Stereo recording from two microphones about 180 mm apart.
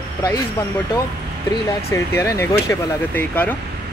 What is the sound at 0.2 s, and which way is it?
Speech, 15° left (ahead or behind).